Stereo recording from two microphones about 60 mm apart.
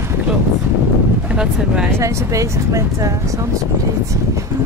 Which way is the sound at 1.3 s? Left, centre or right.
Centre.